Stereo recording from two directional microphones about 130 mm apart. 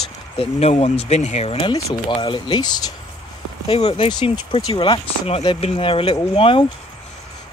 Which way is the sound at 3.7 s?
45° left (ahead or behind).